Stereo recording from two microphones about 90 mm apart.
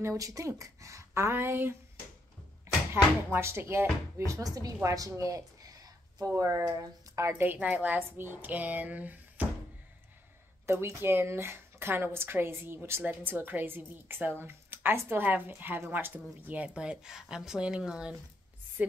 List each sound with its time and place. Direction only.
0.0 s speech: 40° right (ahead or behind)
4.3 s speech: 40° right (ahead or behind)
7.4 s speech: 15° right (ahead or behind)
10.7 s speech: 30° right (ahead or behind)